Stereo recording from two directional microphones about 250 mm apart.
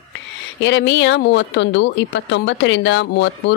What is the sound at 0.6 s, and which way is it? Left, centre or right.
Speech, left.